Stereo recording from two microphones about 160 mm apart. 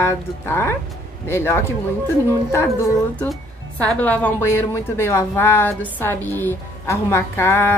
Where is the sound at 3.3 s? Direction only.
5° left (ahead or behind).